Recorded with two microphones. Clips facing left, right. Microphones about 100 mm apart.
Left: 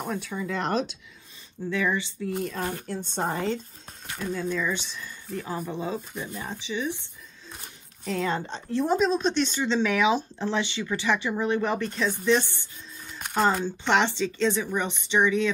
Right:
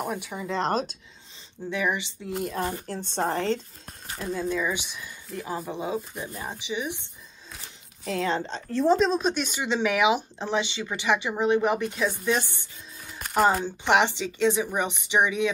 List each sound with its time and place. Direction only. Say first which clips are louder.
0.0 s speech: even; 15° right (ahead or behind)
0.5 s speech: right 3 dB; 30° right (ahead or behind)
1.7 s speech: left 1 dB; 15° right (ahead or behind)
2.4 s speech: right 1 dB; 5° right (ahead or behind)
3.2 s speech: right 2 dB; 10° left (ahead or behind)
4.2 s speech: right 1 dB; 5° right (ahead or behind)
8.0 s speech: even; centre (ahead or behind)
8.3 s speech: right 1 dB; 10° left (ahead or behind)
8.9 s speech: left 3 dB; centre (ahead or behind)
13.7 s speech: right 1 dB; 15° right (ahead or behind)